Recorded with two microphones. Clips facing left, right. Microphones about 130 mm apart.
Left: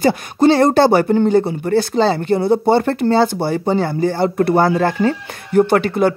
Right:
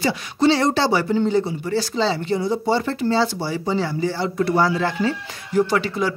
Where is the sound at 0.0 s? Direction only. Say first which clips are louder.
Left 5 dB; 50° left (ahead or behind).